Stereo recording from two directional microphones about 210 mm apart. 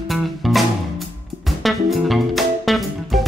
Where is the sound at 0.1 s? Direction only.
Centre (ahead or behind).